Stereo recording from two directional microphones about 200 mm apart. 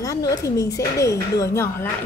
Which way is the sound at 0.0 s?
15° left (ahead or behind).